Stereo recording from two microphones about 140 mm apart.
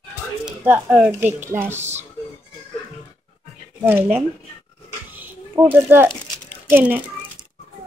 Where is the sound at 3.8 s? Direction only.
15° right (ahead or behind).